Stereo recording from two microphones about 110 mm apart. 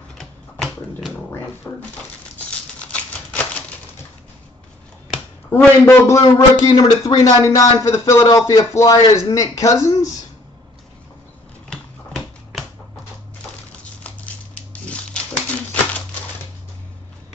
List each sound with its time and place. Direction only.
0.2 s dog: centre (ahead or behind)
1.6 s a man's voice: 20° left (ahead or behind)
2.8 s typewriter: 10° left (ahead or behind)
5.5 s a man's voice: 20° left (ahead or behind)
11.7 s typewriter: 10° left (ahead or behind)
14.0 s a sound: 10° left (ahead or behind)